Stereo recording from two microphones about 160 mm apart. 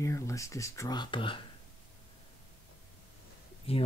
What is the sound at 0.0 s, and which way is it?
Speech, 20° left (ahead or behind).